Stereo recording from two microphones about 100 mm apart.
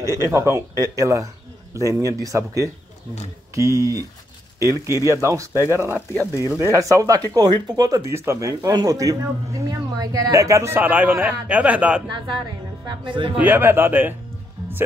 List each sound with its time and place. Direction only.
0.0 s speech: 30° right (ahead or behind); by 12.0 s 15° right (ahead or behind)
12.8 s speech: 55° right (ahead or behind)
13.4 s speech: 20° right (ahead or behind)